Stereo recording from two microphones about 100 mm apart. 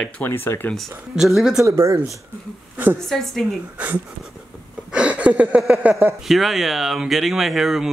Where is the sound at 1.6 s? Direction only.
25° right (ahead or behind).